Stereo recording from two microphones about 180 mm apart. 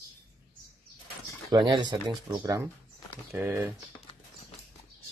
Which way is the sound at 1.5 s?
25° right (ahead or behind).